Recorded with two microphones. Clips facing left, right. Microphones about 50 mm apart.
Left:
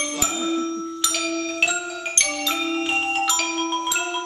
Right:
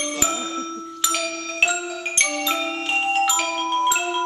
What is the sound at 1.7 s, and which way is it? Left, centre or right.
Music, centre.